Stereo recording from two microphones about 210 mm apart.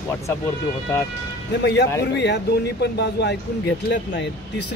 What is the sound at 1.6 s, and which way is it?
Speech, 55° left (ahead or behind).